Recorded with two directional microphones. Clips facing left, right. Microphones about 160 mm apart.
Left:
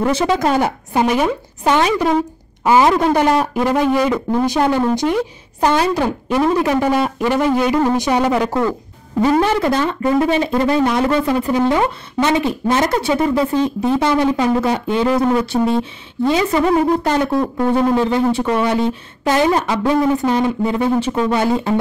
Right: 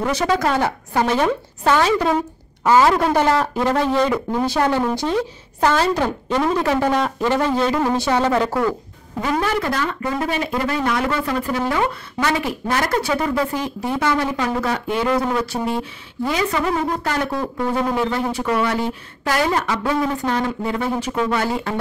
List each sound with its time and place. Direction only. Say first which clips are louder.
0.1 s a man's voice: left 3 dB; 20° left (ahead or behind)
9.2 s speech: left 6 dB; 30° left (ahead or behind)